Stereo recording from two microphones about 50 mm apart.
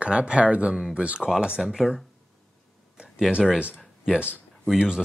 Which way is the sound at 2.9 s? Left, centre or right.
Right.